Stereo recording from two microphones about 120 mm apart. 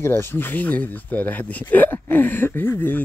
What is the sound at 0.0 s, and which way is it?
Speech, 20° left (ahead or behind).